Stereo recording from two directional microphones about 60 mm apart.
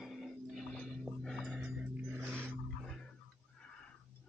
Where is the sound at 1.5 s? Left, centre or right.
Centre.